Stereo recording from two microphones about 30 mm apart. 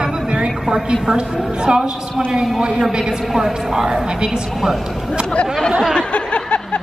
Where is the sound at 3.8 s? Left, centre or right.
Right.